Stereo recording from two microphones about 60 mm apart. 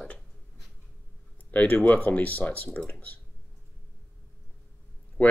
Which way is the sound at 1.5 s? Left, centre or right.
Left.